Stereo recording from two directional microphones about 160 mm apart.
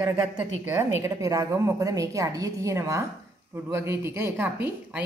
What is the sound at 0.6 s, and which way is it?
A woman's voice, 20° right (ahead or behind).